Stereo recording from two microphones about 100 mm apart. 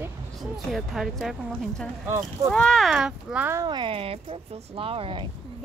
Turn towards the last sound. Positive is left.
turn(degrees=-60)  # may be behind; listen again after turning